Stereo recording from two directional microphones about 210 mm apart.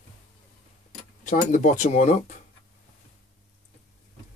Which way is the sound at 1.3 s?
40° left (ahead or behind).